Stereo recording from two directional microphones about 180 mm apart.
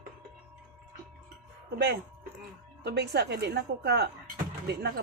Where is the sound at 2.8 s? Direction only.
65° right (ahead or behind).